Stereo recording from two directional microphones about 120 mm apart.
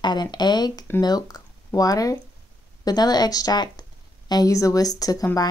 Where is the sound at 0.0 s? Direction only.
35° left (ahead or behind).